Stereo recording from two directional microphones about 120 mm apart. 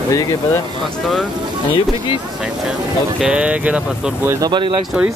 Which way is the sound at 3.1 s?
10° right (ahead or behind).